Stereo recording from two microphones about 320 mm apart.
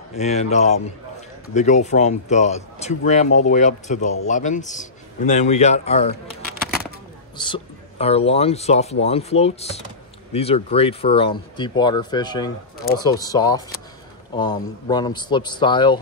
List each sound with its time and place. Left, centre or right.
0.1 s speech: left
7.3 s a man's voice: centre